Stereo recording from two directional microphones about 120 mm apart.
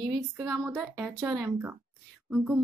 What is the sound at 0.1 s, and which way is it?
Speech, 20° right (ahead or behind).